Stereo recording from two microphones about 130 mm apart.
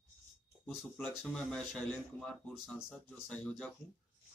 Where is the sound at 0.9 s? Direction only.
5° left (ahead or behind).